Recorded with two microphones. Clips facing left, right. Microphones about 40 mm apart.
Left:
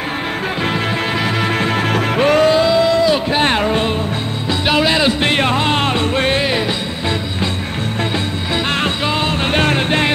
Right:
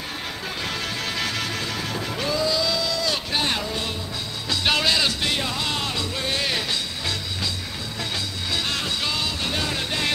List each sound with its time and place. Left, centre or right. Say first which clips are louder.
1.1 s music: left 9 dB; left
1.5 s music: left 12 dB; left
2.1 s music: left 13 dB; left
2.5 s a sound: left 12 dB; left
3.4 s music: left 11 dB; left
4.6 s music: left 7 dB; centre
5.2 s music: left 10 dB; left
8.6 s music: left 9 dB; left
9.5 s music: left 11 dB; left